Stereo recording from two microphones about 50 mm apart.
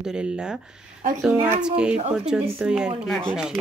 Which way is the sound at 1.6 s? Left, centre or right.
Centre.